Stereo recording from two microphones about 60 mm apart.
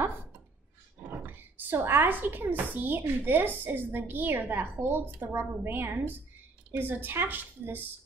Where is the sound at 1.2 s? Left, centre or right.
Right.